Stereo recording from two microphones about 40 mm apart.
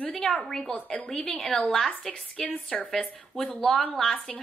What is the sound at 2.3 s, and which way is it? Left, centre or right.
Speech, left.